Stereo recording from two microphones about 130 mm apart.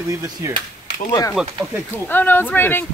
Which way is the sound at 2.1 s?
15° left (ahead or behind).